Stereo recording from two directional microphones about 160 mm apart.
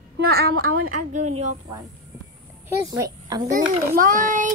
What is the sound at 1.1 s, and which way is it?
Speech, 50° right (ahead or behind).